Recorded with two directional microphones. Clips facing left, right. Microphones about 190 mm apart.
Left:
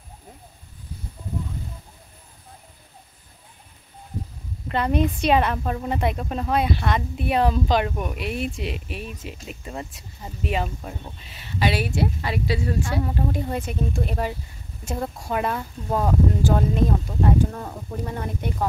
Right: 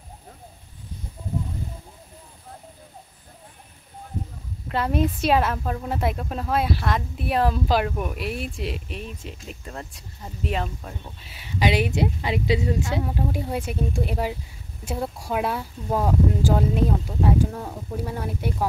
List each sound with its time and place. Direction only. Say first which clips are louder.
4.6 s speech: left 1 dB; 5° right (ahead or behind)
11.2 s speech: right 1 dB; 10° right (ahead or behind)
13.0 s speech: left 1 dB; 5° right (ahead or behind)